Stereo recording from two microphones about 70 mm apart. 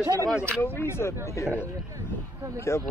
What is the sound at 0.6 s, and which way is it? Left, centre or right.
Speech, left.